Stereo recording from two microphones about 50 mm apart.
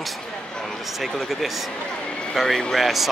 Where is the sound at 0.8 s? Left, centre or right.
Centre.